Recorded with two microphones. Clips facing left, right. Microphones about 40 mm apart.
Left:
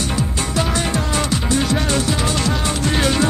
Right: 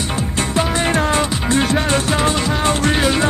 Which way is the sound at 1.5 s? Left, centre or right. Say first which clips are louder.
Right 4 dB; right.